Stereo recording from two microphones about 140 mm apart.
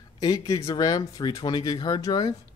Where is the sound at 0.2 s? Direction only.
25° left (ahead or behind).